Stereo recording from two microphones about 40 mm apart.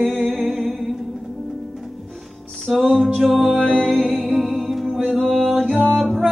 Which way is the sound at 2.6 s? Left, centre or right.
Centre.